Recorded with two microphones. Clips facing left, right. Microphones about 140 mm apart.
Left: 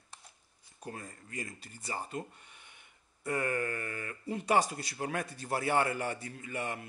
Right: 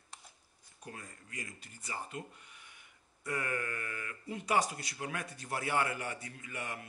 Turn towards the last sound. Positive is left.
turn(degrees=30)  # may be behind; listen again after turning